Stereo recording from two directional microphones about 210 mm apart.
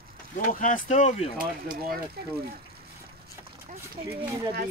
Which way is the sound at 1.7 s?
45° right (ahead or behind).